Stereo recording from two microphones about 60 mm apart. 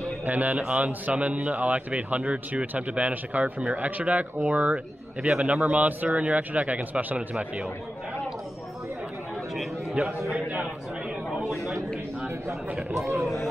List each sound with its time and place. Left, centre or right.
0.3 s speech: right
10.0 s speech: right
11.2 s a sound: centre
13.2 s speech: centre